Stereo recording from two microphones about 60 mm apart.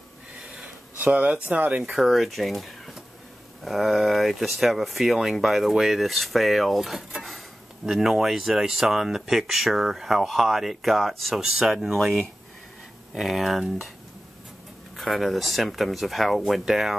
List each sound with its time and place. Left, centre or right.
0.9 s speech: right
1.8 s speech: centre
15.0 s speech: centre